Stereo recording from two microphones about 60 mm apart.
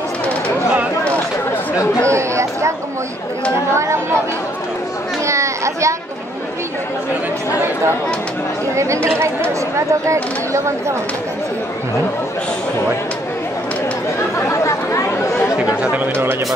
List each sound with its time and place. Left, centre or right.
2.0 s chatter: right
3.7 s speech: right
5.2 s chatter: right
8.7 s speech: right
14.5 s chatter: left